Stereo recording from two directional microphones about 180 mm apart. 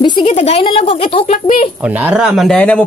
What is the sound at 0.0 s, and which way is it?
Speech, 25° left (ahead or behind).